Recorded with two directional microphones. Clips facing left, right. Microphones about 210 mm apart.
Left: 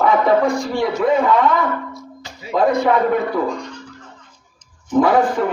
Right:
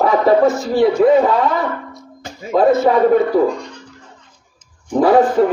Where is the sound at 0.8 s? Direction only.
35° right (ahead or behind).